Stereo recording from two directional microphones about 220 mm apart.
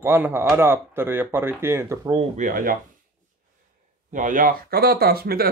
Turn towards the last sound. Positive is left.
turn(degrees=-45)  # may be behind; listen again after turning